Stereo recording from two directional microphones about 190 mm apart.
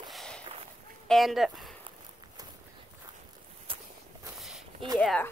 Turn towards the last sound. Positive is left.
turn(degrees=5)  # may be behind; listen again after turning